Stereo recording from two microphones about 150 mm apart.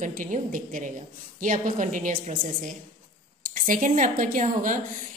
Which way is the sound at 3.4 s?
65° right (ahead or behind).